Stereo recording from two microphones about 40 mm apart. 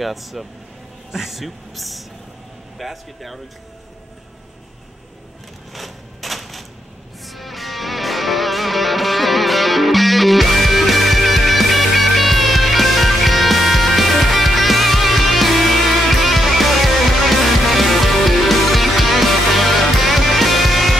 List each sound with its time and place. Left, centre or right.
0.0 s speech: centre
5.7 s a sound: centre
7.2 s music: centre